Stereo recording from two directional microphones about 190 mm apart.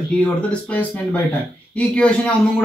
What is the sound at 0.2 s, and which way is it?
A man's voice, 5° left (ahead or behind).